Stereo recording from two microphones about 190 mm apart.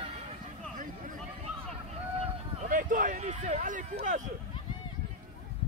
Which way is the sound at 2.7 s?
45° right (ahead or behind).